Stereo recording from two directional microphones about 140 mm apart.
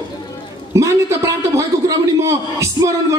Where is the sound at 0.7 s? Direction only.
20° right (ahead or behind).